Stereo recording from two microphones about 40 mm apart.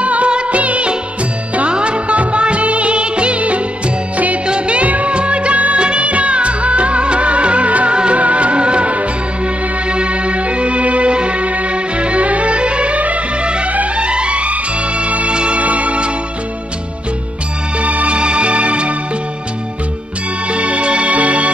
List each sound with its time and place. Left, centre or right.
0.0 s music: right
1.7 s music of bollywood: right
4.5 s music: right
4.8 s music: right
5.1 s music: right
17.7 s music: right
20.5 s music: right